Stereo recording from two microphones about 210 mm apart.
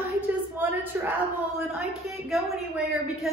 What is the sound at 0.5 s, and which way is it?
Speech, 10° right (ahead or behind).